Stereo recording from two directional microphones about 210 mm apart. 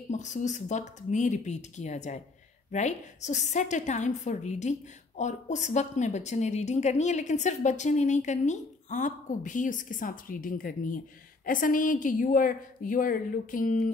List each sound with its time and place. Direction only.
0.1 s a woman's voice: 35° left (ahead or behind)